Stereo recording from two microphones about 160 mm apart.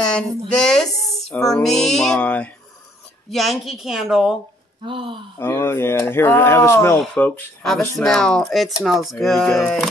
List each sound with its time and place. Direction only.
0.1 s female singing: 5° left (ahead or behind)
3.3 s a woman's voice: centre (ahead or behind)
4.8 s speech: 30° right (ahead or behind)
5.4 s a woman's voice: 15° left (ahead or behind)